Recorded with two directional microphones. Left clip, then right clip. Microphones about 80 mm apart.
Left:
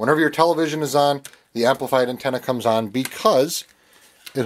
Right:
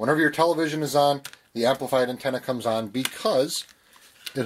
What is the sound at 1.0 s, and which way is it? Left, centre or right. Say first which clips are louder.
Speech: left 1 dB; left.